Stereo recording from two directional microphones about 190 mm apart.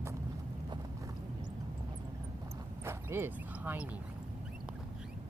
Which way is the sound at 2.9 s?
10° right (ahead or behind).